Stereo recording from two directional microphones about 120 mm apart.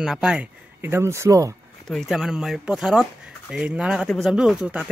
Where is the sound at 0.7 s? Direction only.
20° right (ahead or behind).